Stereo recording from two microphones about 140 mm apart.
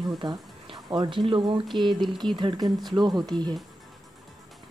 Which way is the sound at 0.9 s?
30° right (ahead or behind).